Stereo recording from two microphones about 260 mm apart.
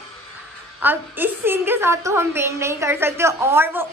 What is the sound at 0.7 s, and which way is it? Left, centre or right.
A woman's voice, centre.